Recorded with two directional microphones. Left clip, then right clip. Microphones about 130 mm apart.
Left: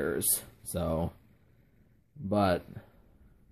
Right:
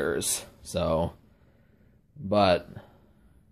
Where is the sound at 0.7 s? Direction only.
30° left (ahead or behind).